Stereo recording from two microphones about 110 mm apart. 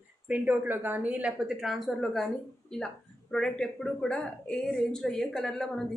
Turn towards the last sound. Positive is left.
turn(degrees=5)  # may be behind; listen again after turning